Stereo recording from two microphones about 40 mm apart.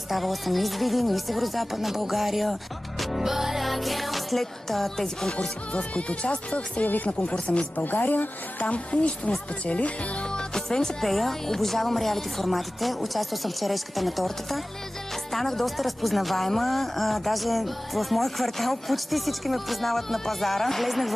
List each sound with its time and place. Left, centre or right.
0.1 s speech: centre
3.0 s music: centre
5.7 s speech: left
7.7 s a woman's voice: left
8.6 s speech: left
10.3 s speech: centre